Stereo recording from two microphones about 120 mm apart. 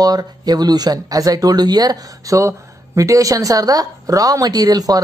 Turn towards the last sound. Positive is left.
turn(degrees=-30)  # may be behind; listen again after turning